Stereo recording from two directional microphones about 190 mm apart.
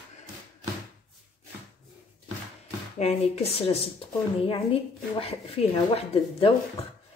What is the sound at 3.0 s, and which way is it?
Speech, 30° left (ahead or behind).